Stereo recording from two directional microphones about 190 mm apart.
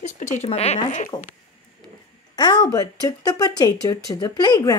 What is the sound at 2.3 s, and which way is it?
A woman's voice, 20° left (ahead or behind).